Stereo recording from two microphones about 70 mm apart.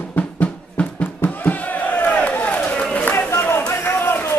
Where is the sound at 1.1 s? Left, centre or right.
Left.